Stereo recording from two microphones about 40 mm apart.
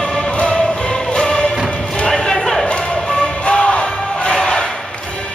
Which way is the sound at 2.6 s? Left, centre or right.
Left.